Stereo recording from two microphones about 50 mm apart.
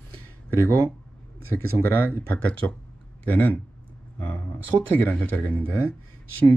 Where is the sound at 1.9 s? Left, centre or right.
Left.